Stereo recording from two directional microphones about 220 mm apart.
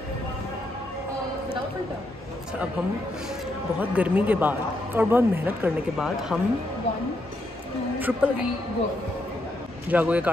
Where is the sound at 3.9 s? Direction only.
5° right (ahead or behind).